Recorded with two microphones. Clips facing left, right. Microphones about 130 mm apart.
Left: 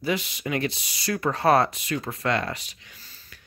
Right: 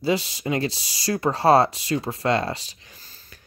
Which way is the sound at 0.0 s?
35° right (ahead or behind).